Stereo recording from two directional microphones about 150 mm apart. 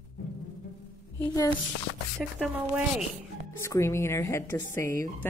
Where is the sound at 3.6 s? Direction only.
20° left (ahead or behind).